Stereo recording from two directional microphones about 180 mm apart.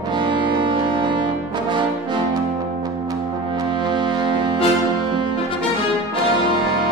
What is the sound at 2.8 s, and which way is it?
Music, 20° right (ahead or behind).